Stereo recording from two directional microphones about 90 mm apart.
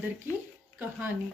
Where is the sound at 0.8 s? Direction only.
20° right (ahead or behind).